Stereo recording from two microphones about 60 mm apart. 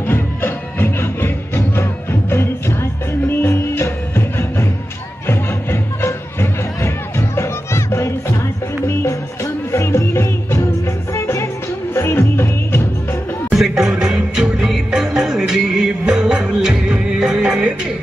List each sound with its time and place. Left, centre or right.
0.0 s music: left
11.9 s music: left
13.5 s music: centre